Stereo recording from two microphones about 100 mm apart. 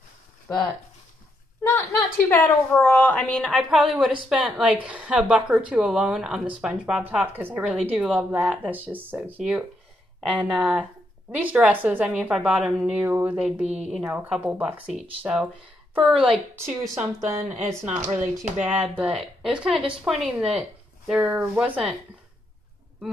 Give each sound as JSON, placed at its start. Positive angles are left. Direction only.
{"t": 1.6, "sound": "a woman's voice", "side_deg": 25}
{"t": 2.9, "sound": "a woman's voice", "side_deg": 15}
{"t": 3.5, "sound": "speech", "side_deg": 0}
{"t": 4.4, "sound": "a woman's voice", "side_deg": -15}
{"t": 16.5, "sound": "a woman's voice", "side_deg": -25}